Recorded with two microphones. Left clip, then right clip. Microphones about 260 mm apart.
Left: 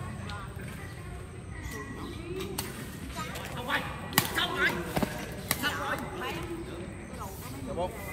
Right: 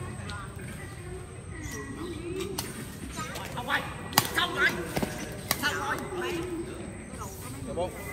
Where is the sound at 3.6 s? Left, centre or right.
Centre.